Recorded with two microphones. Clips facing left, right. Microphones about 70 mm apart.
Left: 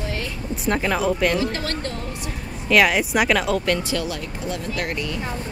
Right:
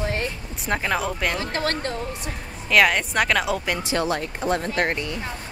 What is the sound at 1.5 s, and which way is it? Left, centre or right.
Speech, right.